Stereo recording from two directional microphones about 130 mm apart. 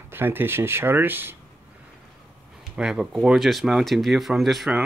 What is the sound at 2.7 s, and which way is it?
Speech, 5° right (ahead or behind).